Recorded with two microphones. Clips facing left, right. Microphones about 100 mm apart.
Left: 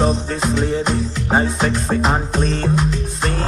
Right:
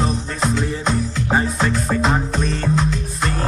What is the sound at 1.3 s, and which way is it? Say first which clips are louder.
Music: left 2 dB; 25° left (ahead or behind).